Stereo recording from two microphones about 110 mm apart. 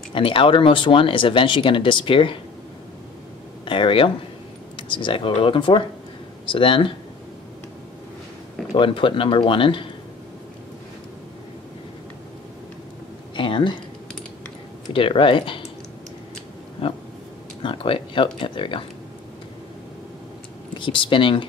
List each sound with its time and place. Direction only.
0.1 s speech: 55° left (ahead or behind)
3.6 s speech: 50° left (ahead or behind)
8.7 s speech: 50° left (ahead or behind)
13.4 s a sound: 50° left (ahead or behind)
14.9 s speech: 55° left (ahead or behind)
16.8 s a sound: 55° left (ahead or behind)
17.6 s speech: 50° left (ahead or behind)
20.8 s speech: 50° left (ahead or behind)